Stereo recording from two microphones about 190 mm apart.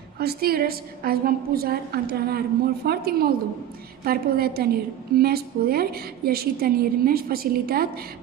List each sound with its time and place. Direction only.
0.2 s a woman's voice: 55° right (ahead or behind)